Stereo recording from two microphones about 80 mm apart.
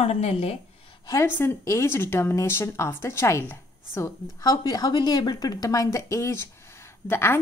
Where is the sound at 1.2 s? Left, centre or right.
Left.